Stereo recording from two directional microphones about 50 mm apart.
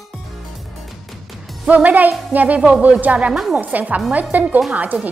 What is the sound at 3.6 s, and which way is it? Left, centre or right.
A woman's voice, right.